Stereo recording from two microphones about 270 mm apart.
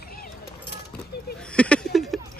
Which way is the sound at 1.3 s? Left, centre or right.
Centre.